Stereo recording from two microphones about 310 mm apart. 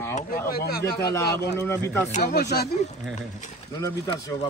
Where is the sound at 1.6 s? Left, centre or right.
Centre.